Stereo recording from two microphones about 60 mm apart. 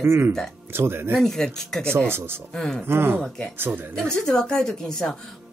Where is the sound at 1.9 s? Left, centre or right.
Right.